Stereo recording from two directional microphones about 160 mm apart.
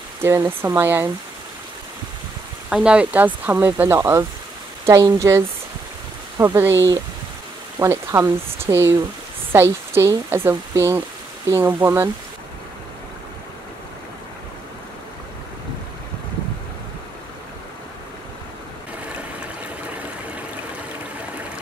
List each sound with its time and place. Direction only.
0.2 s speech: 15° right (ahead or behind)
2.7 s speech: 5° right (ahead or behind)
7.8 s speech: 20° right (ahead or behind)